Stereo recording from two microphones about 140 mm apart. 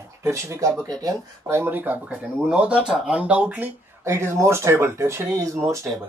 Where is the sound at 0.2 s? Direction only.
20° right (ahead or behind).